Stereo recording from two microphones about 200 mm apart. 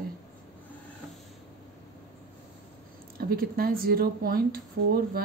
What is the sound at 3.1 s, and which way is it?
Speech, 50° right (ahead or behind).